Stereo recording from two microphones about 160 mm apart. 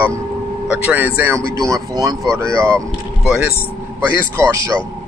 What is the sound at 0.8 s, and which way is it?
Speech, 10° right (ahead or behind).